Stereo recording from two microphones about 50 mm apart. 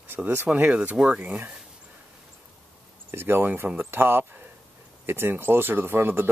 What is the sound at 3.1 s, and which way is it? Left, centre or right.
Speech, right.